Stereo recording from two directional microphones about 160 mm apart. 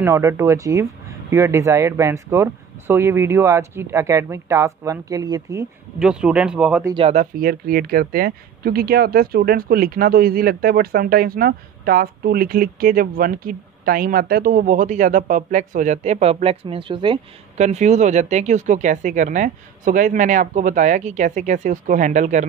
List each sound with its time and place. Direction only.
0.0 s speech: 15° right (ahead or behind)
5.9 s speech: 5° right (ahead or behind)
6.8 s speech: 25° right (ahead or behind)
7.1 s speech: 55° right (ahead or behind); by 17.2 s 30° right (ahead or behind)
17.6 s speech: 45° right (ahead or behind)